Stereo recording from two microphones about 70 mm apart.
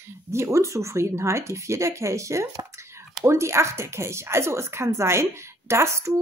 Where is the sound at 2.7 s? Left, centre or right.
Right.